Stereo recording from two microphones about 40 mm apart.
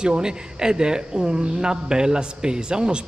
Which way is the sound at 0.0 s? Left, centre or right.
Centre.